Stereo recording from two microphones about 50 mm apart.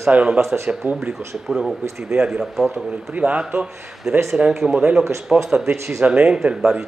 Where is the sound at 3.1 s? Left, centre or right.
Right.